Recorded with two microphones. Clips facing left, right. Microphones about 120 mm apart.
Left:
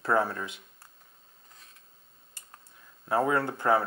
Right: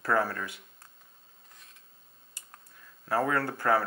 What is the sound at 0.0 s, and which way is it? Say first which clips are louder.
Speech: left 1 dB; 25° left (ahead or behind).